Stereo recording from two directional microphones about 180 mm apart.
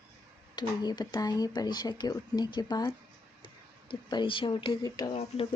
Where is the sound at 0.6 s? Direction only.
25° left (ahead or behind).